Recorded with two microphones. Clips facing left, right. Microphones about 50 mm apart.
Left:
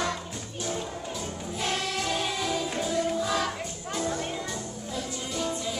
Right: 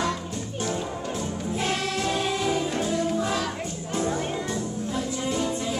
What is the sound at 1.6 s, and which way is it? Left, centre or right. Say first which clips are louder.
Choir: right 2 dB; centre.